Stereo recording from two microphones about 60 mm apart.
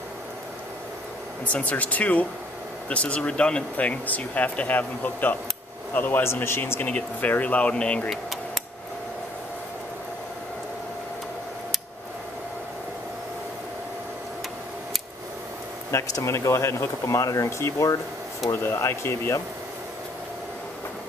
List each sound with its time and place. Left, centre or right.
1.4 s speech: left
6.2 s speech: left; by 8.0 s centre
15.9 s speech: left